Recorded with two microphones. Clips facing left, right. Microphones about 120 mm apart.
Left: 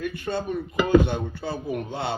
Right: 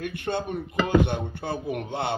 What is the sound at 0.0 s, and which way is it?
Speech, 60° right (ahead or behind).